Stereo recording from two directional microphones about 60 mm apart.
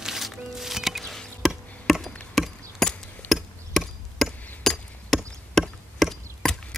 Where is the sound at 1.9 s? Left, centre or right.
Centre.